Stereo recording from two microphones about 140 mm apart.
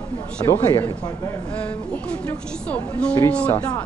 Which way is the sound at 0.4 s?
30° left (ahead or behind).